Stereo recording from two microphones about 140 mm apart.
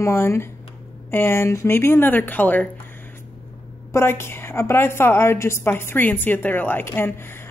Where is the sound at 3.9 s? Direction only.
15° left (ahead or behind).